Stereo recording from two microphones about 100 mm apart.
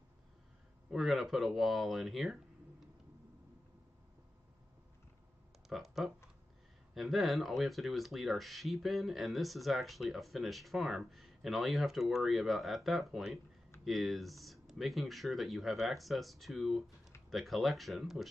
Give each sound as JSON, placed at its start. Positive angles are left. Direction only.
{"t": 0.8, "sound": "speech", "side_deg": 0}
{"t": 5.7, "sound": "speech", "side_deg": 0}